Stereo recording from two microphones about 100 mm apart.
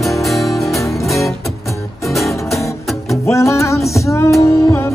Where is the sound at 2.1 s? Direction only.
Centre (ahead or behind).